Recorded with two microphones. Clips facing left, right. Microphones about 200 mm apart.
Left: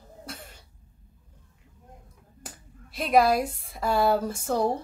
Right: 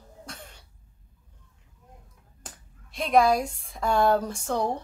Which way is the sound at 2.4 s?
5° left (ahead or behind).